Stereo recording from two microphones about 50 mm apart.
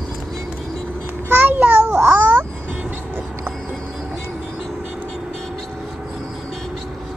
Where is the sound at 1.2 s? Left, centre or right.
Right.